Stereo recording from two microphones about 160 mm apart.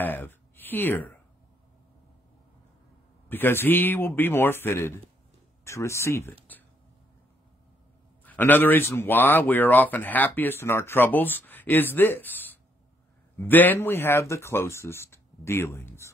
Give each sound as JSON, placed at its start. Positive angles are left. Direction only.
{"t": 0.0, "sound": "speech", "side_deg": 15}
{"t": 3.3, "sound": "a man's voice", "side_deg": 15}
{"t": 8.3, "sound": "a man's voice", "side_deg": 10}